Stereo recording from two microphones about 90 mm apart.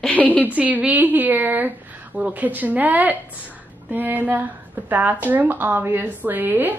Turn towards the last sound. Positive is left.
turn(degrees=-20)  # may be behind; listen again after turning